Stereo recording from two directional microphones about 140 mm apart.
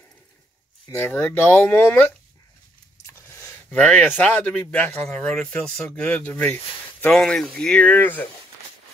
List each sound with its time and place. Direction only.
0.9 s speech: 15° left (ahead or behind)
3.1 s a sound: 15° left (ahead or behind)
4.2 s speech: 10° left (ahead or behind)